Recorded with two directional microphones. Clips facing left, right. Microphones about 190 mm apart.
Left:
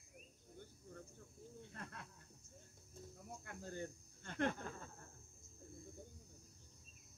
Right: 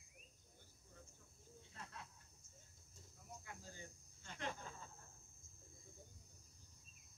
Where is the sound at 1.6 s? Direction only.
55° left (ahead or behind).